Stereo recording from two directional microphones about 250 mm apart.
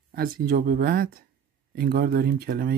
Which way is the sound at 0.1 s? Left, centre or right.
Right.